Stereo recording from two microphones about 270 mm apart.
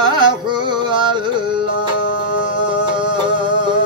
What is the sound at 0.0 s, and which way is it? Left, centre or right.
Carnatic music, centre.